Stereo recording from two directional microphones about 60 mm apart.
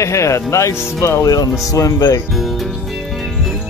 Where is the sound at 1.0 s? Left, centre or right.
Left.